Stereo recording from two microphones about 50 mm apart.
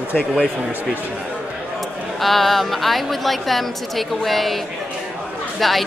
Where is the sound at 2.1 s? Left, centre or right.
Centre.